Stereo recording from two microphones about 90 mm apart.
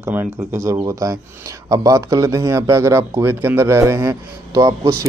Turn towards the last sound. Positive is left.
turn(degrees=-40)  # may be behind; listen again after turning